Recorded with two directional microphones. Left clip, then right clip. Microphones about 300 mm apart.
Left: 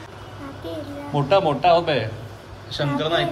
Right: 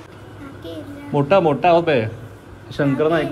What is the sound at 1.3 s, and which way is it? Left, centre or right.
A man's voice, right.